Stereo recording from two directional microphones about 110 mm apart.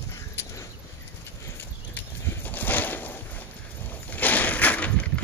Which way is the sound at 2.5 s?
15° left (ahead or behind).